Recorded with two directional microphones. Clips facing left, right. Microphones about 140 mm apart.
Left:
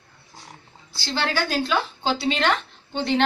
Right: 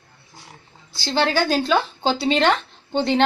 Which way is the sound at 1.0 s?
25° right (ahead or behind).